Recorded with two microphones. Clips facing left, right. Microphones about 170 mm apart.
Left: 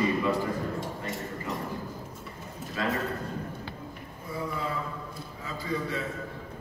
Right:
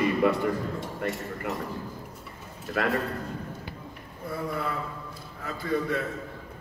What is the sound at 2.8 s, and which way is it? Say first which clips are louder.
Speech: right 3 dB; 65° right (ahead or behind).